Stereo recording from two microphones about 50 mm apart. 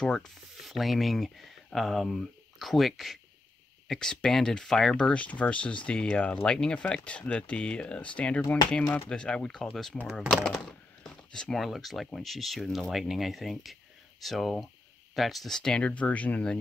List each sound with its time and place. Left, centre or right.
0.0 s speech: centre
0.6 s speech: centre
15.8 s speech: left